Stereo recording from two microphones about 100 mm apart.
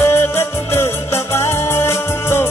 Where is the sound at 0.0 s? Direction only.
25° left (ahead or behind).